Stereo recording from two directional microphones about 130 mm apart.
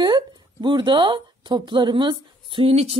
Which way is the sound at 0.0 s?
35° right (ahead or behind).